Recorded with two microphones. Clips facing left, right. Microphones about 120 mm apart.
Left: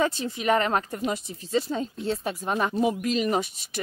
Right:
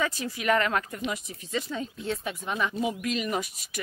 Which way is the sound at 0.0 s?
25° left (ahead or behind).